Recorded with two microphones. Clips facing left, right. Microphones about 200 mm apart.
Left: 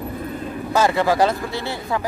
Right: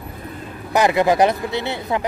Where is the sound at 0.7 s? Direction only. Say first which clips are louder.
Right 2 dB; 15° right (ahead or behind).